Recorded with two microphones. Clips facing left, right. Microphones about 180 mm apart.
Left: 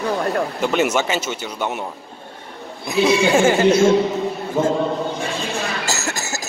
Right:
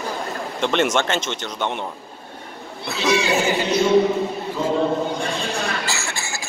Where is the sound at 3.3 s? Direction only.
50° left (ahead or behind).